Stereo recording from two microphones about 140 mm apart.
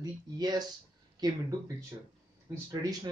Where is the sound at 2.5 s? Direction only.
25° right (ahead or behind).